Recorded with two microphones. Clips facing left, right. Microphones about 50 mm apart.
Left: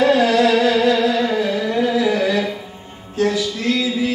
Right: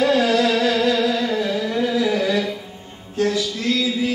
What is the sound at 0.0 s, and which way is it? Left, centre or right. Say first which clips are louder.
Music: left 3 dB; left.